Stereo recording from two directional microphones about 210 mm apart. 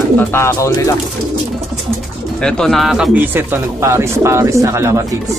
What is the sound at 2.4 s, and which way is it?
Speech, 5° left (ahead or behind).